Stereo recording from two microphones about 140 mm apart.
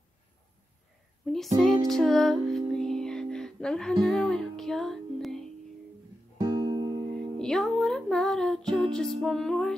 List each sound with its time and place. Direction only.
1.2 s music: centre (ahead or behind)
6.4 s music: 30° right (ahead or behind)
7.2 s music: 5° left (ahead or behind)